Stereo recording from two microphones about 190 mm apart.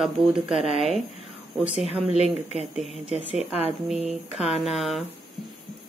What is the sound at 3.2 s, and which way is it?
Speech, 5° right (ahead or behind).